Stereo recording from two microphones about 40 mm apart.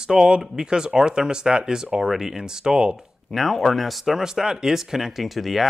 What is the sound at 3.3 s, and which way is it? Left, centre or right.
Speech, centre.